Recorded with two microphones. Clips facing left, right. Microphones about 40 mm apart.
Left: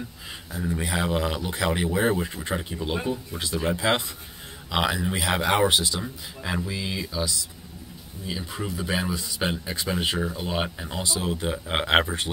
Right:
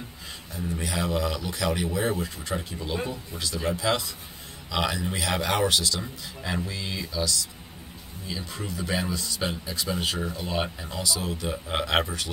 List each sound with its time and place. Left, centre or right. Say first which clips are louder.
0.7 s speech: left 2 dB; left
4.6 s speech: left 3 dB; left
5.9 s speech: left 2 dB; centre
8.3 s speech: left 3 dB; centre
9.5 s speech: left 2 dB; left